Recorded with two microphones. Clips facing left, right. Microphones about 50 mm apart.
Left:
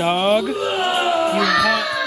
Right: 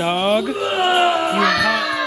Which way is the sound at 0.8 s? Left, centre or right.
Right.